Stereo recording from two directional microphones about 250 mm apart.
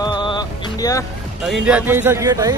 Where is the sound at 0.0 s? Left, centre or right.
Centre.